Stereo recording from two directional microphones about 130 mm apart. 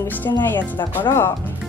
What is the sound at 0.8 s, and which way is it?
Speech, 30° left (ahead or behind).